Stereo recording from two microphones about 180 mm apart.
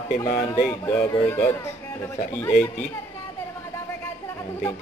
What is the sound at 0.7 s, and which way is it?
Speech, 10° left (ahead or behind).